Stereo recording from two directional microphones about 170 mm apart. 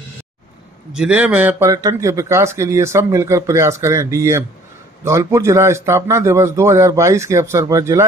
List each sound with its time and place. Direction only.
0.9 s speech: 5° right (ahead or behind)